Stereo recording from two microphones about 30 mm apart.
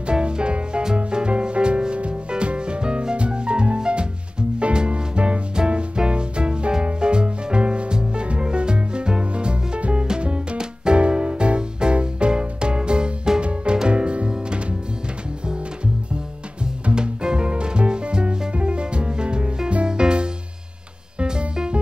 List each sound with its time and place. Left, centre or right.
0.0 s music: right
16.9 s music: right
21.3 s music: right